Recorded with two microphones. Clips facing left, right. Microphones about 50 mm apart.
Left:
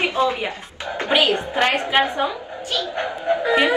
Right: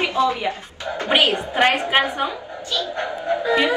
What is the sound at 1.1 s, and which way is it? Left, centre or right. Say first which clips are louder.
Speech: even; right.